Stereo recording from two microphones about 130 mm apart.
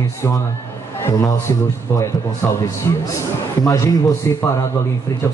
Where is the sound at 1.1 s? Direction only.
20° left (ahead or behind).